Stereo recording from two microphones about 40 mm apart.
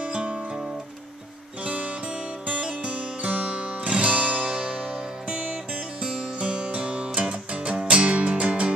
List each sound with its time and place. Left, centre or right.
0.0 s music: right
1.6 s music: right
4.5 s music: right